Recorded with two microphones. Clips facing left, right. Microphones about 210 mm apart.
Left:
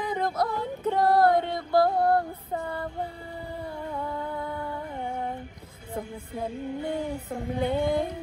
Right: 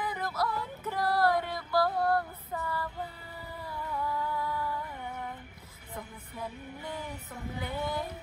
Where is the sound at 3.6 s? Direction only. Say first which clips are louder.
Left 3 dB; 25° left (ahead or behind).